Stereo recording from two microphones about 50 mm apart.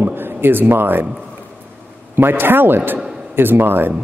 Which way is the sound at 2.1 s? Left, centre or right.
Right.